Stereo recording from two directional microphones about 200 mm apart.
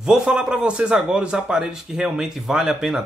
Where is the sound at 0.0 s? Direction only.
5° right (ahead or behind).